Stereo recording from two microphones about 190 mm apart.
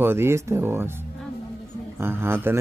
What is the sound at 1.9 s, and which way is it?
Speech, 10° right (ahead or behind).